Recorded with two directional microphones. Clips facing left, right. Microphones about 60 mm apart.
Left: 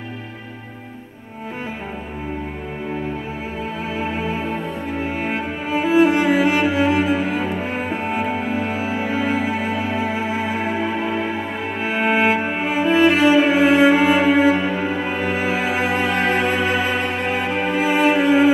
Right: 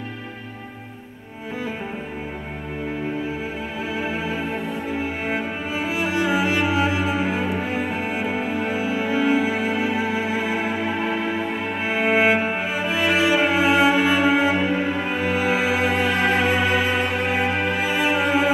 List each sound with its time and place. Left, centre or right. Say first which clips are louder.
5.2 s cello: left 2 dB; left
11.8 s cello: left 1 dB; left
13.5 s music: left 4 dB; left
15.6 s music: even; left